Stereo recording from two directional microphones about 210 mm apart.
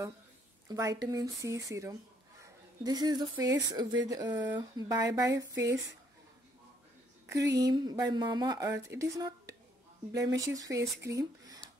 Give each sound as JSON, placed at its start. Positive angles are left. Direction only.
{"t": 0.7, "sound": "a woman's voice", "side_deg": -15}
{"t": 7.5, "sound": "a woman's voice", "side_deg": -20}